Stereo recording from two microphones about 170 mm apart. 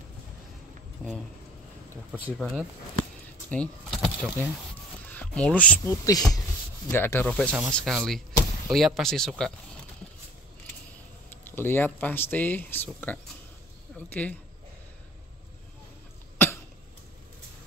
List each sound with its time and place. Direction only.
1.0 s a sound: centre (ahead or behind)
2.3 s speech: centre (ahead or behind)
5.9 s speech: 20° left (ahead or behind); by 9.3 s 5° left (ahead or behind)
11.2 s speech: 10° left (ahead or behind)